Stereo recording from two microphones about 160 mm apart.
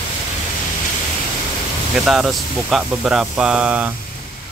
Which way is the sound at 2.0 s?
Centre (ahead or behind).